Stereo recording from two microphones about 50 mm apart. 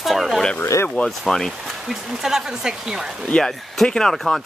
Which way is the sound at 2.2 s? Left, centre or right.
Centre.